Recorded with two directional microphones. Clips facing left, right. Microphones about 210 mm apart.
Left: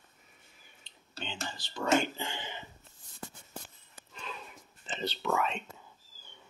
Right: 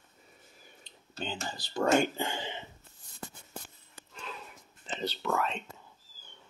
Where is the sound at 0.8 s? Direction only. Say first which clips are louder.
Right 5 dB; 40° right (ahead or behind).